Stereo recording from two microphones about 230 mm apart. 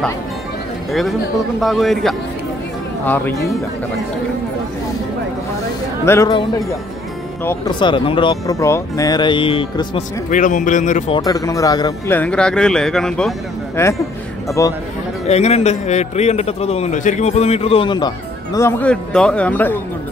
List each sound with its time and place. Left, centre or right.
1.6 s speech: centre
6.0 s speech: centre
7.4 s speech: centre
12.2 s speech: centre
15.2 s speech: left; by 19.8 s centre